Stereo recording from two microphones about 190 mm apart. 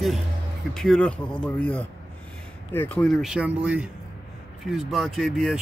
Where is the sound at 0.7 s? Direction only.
5° left (ahead or behind).